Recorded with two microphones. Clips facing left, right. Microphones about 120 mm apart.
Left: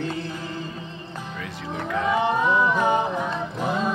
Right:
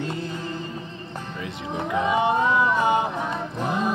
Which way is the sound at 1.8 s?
20° right (ahead or behind).